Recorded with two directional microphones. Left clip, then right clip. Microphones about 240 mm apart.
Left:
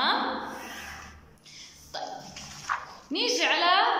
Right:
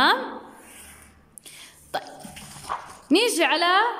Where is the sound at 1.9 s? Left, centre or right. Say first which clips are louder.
Right 6 dB; right.